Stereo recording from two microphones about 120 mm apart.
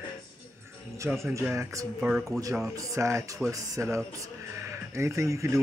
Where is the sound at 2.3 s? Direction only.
25° right (ahead or behind).